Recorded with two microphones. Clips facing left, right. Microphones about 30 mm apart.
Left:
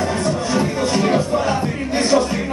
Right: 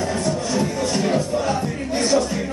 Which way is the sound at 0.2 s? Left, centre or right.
Left.